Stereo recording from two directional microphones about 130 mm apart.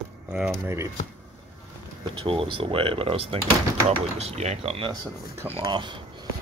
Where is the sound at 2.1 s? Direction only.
45° right (ahead or behind).